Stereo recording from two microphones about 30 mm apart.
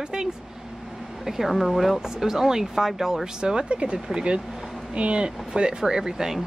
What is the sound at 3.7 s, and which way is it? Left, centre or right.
Speech, right.